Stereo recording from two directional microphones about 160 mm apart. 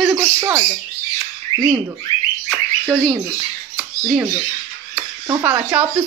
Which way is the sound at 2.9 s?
Centre (ahead or behind).